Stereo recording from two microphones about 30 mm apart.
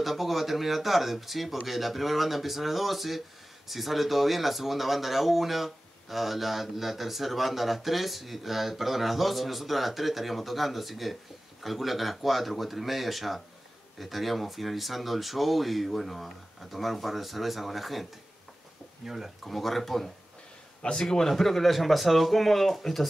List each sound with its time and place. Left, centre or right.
0.0 s speech: centre
19.0 s speech: centre
19.4 s speech: centre
20.8 s a man's voice: left
21.3 s speech: centre